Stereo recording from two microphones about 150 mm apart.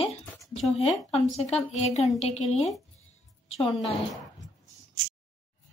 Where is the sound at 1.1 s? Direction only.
45° left (ahead or behind).